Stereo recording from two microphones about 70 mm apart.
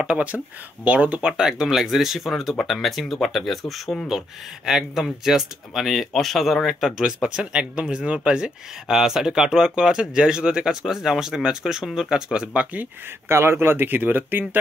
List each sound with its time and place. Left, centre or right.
0.0 s speech: centre
13.3 s speech: right